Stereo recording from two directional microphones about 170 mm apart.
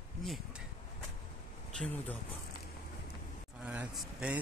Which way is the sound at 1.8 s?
10° left (ahead or behind).